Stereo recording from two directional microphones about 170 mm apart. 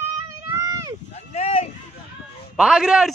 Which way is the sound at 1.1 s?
40° left (ahead or behind).